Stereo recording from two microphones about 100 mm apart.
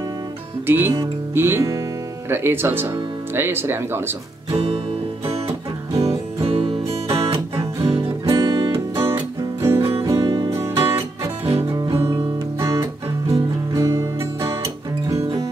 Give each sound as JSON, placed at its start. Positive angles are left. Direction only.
{"t": 0.7, "sound": "speech", "side_deg": -20}
{"t": 5.9, "sound": "music", "side_deg": -75}
{"t": 8.3, "sound": "music", "side_deg": -35}
{"t": 11.4, "sound": "music", "side_deg": -75}
{"t": 12.1, "sound": "music", "side_deg": -30}